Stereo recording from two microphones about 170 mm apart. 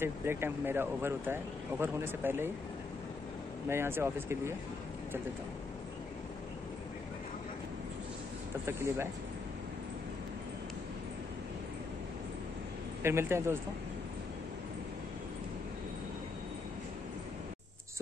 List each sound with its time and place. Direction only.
0.0 s speech: 15° right (ahead or behind)
3.6 s speech: 15° right (ahead or behind)
8.6 s speech: 15° right (ahead or behind)
13.0 s speech: 15° right (ahead or behind)